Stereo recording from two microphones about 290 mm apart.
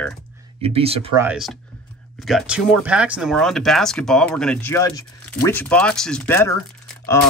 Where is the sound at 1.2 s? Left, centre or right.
Centre.